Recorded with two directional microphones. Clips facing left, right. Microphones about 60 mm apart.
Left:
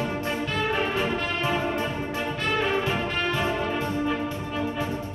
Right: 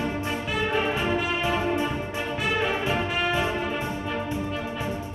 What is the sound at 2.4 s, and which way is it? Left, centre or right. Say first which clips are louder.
Music: even; centre.